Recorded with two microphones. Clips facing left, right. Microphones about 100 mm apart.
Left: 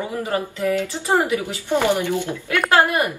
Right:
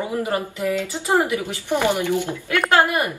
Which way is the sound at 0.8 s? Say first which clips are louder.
Even; 15° left (ahead or behind).